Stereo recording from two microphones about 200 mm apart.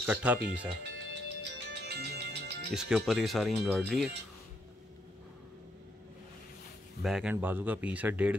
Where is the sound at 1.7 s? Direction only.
55° right (ahead or behind).